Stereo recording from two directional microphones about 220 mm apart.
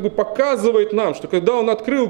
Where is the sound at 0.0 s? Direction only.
15° right (ahead or behind).